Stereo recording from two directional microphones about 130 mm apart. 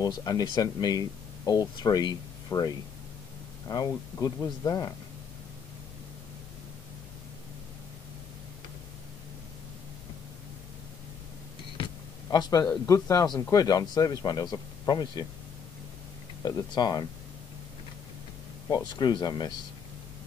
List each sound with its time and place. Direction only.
0.0 s speech: 30° left (ahead or behind)
11.7 s speech: 35° left (ahead or behind)
16.4 s speech: 30° left (ahead or behind)
18.7 s speech: 35° left (ahead or behind)